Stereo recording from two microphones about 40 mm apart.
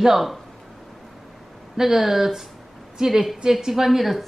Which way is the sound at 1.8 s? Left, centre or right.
Centre.